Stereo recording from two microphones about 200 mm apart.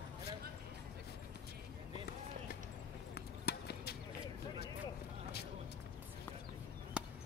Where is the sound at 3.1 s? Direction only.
55° left (ahead or behind).